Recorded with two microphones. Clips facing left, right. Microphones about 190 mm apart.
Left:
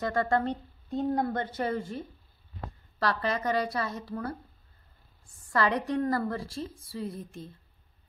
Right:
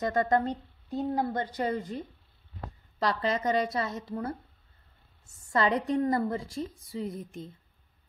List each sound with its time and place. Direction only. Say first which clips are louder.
0.0 s a woman's voice: right 1 dB; 20° right (ahead or behind)